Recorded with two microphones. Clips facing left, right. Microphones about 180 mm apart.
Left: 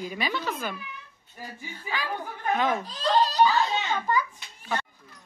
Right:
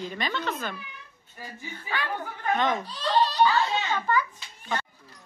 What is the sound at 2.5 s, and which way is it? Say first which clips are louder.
Speech: even; 5° left (ahead or behind).